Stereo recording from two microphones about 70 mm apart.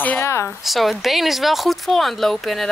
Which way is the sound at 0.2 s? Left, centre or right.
Left.